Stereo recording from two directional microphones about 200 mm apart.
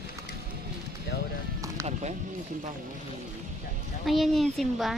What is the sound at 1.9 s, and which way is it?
Speech, 35° right (ahead or behind).